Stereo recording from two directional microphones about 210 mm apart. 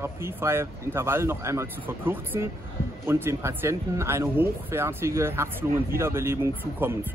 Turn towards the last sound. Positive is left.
turn(degrees=-10)  # may be behind; listen again after turning